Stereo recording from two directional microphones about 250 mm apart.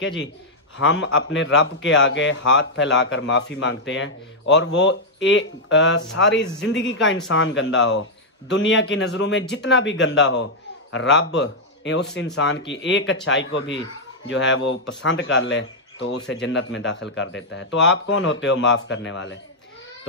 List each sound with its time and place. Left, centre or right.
0.0 s a man's voice: left